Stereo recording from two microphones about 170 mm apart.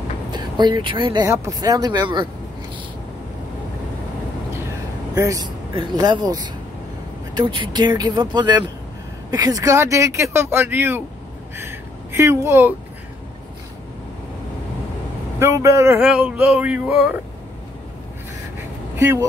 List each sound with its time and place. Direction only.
0.3 s speech: 25° right (ahead or behind)
5.1 s speech: 20° right (ahead or behind)
11.5 s a sound: 15° right (ahead or behind)
15.3 s speech: 15° right (ahead or behind)
18.9 s speech: 15° right (ahead or behind)